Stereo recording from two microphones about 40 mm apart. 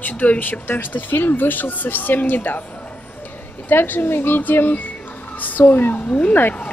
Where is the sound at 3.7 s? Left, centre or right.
Left.